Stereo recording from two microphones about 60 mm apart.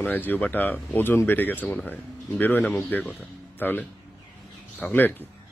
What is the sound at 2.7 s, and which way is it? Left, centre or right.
A man's voice, left.